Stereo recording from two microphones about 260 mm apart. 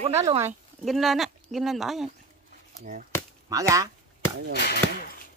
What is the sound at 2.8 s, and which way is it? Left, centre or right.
Speech, right.